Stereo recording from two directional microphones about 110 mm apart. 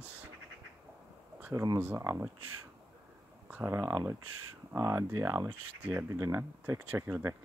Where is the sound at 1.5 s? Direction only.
30° right (ahead or behind).